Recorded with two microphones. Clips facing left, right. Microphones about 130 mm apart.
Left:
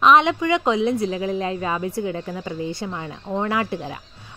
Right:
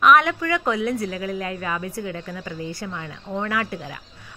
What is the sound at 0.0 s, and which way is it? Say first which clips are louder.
A woman's voice: left 1 dB; 25° left (ahead or behind).